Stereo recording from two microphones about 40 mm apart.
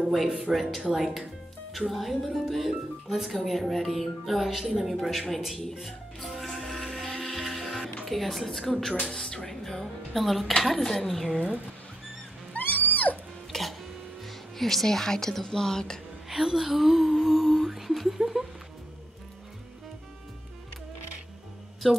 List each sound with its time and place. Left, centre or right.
0.1 s a woman's voice: centre
5.8 s music: centre
8.0 s a woman's voice: centre
9.1 s a woman's voice: centre
12.5 s music: left
13.5 s music: centre
14.2 s speech: centre
16.3 s a woman's voice: centre
21.8 s a woman's voice: centre